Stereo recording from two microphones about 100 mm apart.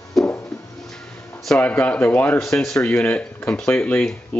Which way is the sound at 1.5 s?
15° left (ahead or behind).